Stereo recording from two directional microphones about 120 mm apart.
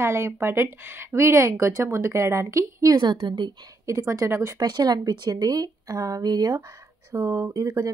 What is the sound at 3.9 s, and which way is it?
Speech, 25° right (ahead or behind).